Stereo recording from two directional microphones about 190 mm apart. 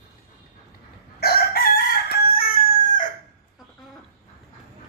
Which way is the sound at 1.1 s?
55° left (ahead or behind).